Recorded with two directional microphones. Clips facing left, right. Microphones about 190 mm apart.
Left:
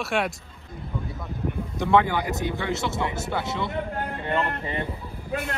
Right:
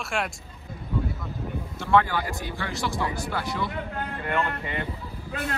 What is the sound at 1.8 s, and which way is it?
Speech, 15° left (ahead or behind).